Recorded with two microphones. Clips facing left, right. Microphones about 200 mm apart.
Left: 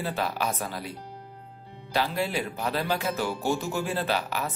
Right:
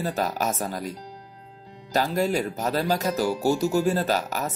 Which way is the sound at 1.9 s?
45° right (ahead or behind).